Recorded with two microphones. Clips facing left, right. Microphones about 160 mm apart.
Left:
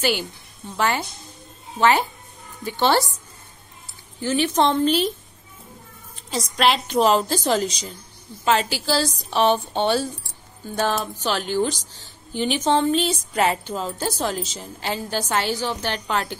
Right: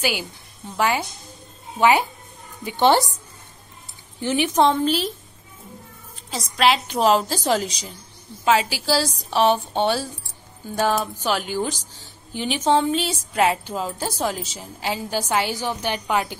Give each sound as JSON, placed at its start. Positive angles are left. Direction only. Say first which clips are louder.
{"t": 0.0, "sound": "speech", "louder": "left 2 dB", "side_deg": -10}
{"t": 4.2, "sound": "speech", "louder": "right 1 dB", "side_deg": -15}
{"t": 6.3, "sound": "a woman's voice", "louder": "right 1 dB", "side_deg": 0}